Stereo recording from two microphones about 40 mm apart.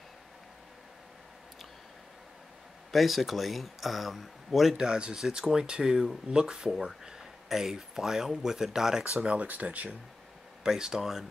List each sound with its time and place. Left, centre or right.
2.9 s speech: centre
4.7 s speech: centre
7.1 s speech: centre
9.3 s speech: right
10.6 s speech: centre